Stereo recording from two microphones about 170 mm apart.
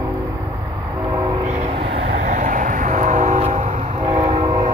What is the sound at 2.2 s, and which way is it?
Vehicle, 50° right (ahead or behind).